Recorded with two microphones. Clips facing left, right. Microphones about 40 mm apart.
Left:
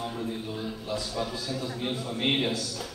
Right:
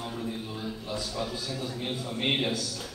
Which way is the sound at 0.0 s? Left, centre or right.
Centre.